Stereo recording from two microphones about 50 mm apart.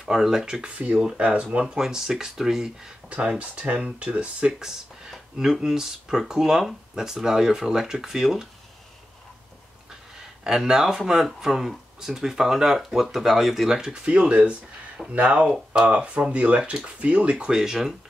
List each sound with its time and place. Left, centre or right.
0.0 s speech: centre
1.1 s speech: right; by 2.9 s centre
3.1 s speech: right
4.6 s a sound: centre
5.1 s speech: centre
10.4 s speech: centre
13.7 s speech: centre
17.6 s speech: centre